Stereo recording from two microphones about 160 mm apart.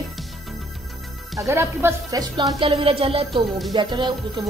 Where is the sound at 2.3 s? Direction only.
30° right (ahead or behind).